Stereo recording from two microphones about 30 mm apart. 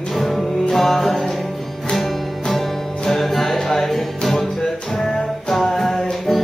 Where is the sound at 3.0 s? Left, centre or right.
Centre.